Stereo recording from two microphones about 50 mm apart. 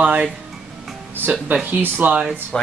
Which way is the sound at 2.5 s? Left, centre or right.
Left.